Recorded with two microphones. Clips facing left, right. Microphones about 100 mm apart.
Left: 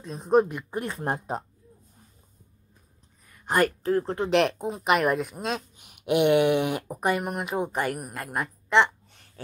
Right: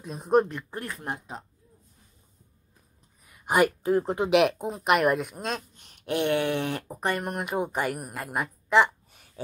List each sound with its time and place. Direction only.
0.0 s speech: centre (ahead or behind)
0.5 s speech: 15° left (ahead or behind)
0.9 s speech: 40° left (ahead or behind)
3.3 s speech: 10° right (ahead or behind)